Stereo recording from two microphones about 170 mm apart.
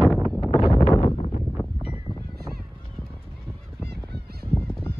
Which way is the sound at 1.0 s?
35° left (ahead or behind).